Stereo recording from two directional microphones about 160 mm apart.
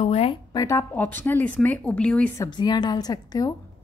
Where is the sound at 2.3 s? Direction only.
25° left (ahead or behind).